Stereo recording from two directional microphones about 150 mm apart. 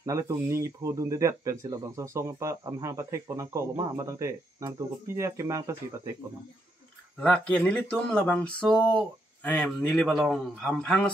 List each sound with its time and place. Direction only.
0.0 s speech: 20° right (ahead or behind)
7.2 s speech: 10° left (ahead or behind)